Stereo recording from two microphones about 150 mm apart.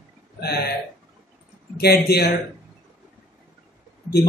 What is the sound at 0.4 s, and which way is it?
Speech, 90° left.